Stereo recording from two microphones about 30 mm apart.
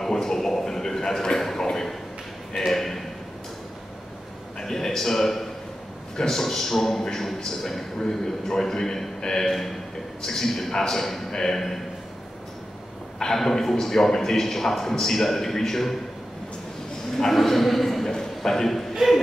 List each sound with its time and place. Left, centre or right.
0.1 s a man's voice: centre
2.7 s speech: centre
4.6 s a man's voice: centre
13.4 s a man's voice: centre
17.3 s speech: centre
18.0 s a sound: centre